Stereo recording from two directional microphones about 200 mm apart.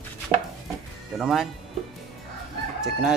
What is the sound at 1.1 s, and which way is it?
Speech, centre (ahead or behind).